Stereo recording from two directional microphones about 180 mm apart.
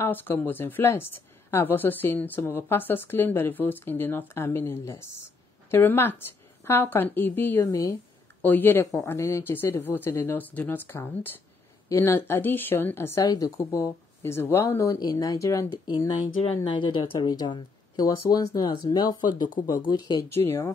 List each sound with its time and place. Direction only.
0.0 s a woman's voice: 10° left (ahead or behind)
16.6 s speech: 25° left (ahead or behind)